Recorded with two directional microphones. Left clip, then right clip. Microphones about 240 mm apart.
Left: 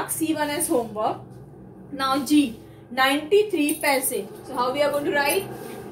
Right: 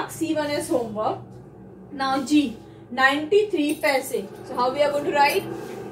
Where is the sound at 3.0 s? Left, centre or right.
Left.